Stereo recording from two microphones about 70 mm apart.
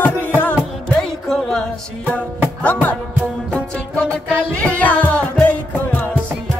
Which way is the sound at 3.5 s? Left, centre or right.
Centre.